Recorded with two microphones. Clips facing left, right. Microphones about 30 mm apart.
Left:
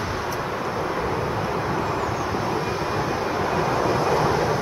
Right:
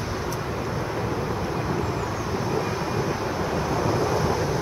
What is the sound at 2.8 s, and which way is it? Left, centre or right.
Vehicle, left.